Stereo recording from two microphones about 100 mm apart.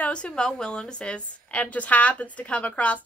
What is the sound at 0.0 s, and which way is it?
Speech, 10° left (ahead or behind).